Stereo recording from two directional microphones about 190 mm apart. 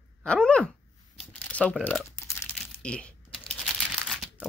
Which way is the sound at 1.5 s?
5° left (ahead or behind).